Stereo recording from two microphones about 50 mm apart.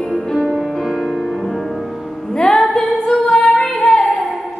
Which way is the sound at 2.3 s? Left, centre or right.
Centre.